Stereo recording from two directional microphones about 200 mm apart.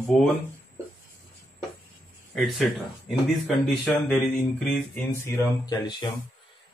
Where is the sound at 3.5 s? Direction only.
Centre (ahead or behind).